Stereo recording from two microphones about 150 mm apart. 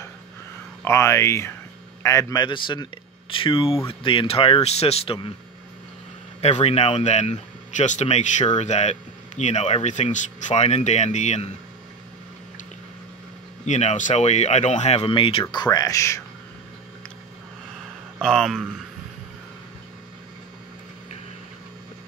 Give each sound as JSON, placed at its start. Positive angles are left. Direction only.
{"t": 0.8, "sound": "speech", "side_deg": 20}
{"t": 6.4, "sound": "speech", "side_deg": 45}
{"t": 13.7, "sound": "speech", "side_deg": 50}
{"t": 15.5, "sound": "speech", "side_deg": 25}
{"t": 18.2, "sound": "speech", "side_deg": 5}